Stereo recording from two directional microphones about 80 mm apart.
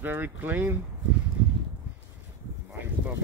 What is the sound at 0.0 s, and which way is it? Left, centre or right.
Speech, right.